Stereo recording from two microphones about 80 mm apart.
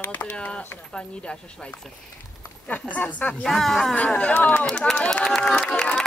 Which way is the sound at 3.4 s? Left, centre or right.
Centre.